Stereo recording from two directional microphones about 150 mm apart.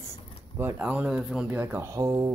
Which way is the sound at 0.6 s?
10° right (ahead or behind).